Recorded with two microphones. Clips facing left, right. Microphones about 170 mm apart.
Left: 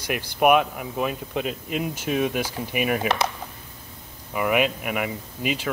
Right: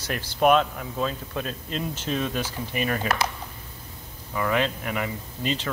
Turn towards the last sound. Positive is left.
turn(degrees=10)  # may be behind; listen again after turning